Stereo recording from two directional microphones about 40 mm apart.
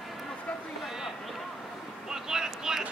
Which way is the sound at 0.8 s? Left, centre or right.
Centre.